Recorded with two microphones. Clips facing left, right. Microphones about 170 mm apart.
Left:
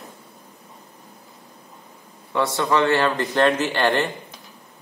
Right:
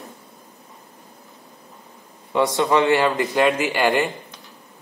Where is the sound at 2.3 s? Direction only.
15° right (ahead or behind).